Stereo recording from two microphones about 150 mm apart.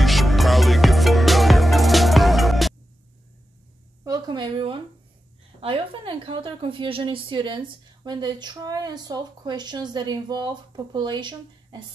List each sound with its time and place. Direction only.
0.0 s music: centre (ahead or behind)
4.0 s a woman's voice: 25° right (ahead or behind)